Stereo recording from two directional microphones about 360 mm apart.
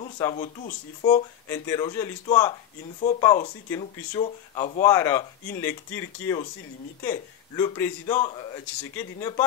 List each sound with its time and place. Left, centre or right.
0.0 s speech: centre